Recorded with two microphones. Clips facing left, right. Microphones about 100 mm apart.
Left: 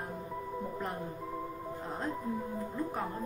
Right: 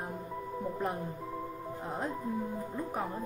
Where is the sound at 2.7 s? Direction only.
10° right (ahead or behind).